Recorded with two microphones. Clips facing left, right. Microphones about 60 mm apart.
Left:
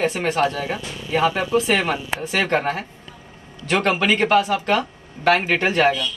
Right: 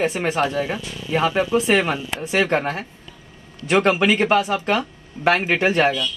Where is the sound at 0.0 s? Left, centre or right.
Centre.